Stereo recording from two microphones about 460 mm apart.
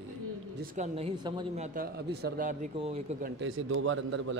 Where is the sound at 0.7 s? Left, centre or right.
Centre.